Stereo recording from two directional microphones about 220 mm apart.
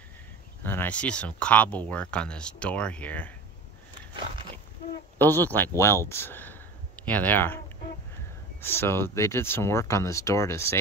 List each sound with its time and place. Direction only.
0.7 s speech: 10° left (ahead or behind)
5.2 s speech: 10° left (ahead or behind)